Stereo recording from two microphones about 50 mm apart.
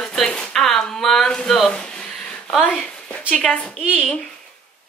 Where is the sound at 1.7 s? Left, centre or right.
Centre.